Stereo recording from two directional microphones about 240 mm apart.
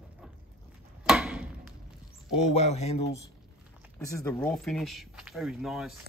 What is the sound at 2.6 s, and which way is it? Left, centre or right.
Speech, left.